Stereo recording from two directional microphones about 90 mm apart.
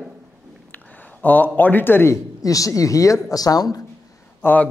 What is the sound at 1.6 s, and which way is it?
Speech, 20° left (ahead or behind).